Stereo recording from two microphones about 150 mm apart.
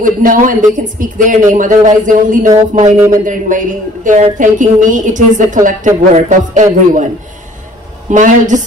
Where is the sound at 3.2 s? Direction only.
60° right (ahead or behind).